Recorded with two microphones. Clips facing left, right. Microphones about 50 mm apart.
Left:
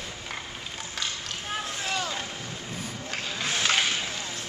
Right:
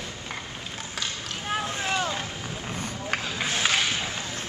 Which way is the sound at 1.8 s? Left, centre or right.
Right.